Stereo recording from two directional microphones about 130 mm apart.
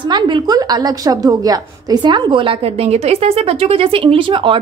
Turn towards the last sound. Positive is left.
turn(degrees=-40)  # may be behind; listen again after turning